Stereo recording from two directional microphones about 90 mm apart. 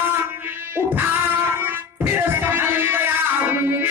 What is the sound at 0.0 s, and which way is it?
Music, 25° right (ahead or behind).